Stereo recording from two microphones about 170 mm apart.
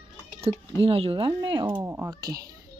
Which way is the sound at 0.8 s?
35° right (ahead or behind).